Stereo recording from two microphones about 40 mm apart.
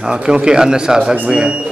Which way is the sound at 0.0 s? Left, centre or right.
Right.